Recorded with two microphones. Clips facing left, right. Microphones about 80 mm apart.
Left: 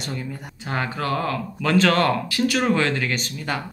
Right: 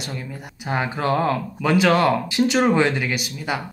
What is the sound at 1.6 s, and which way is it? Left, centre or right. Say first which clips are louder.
Speech: right 1 dB; centre.